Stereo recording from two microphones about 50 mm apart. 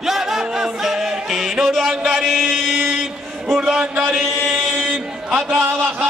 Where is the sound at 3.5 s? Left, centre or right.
Centre.